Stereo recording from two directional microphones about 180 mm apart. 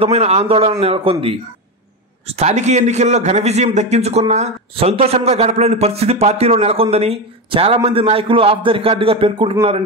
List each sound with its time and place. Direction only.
0.0 s a man's voice: 35° right (ahead or behind)
2.2 s a man's voice: 35° right (ahead or behind)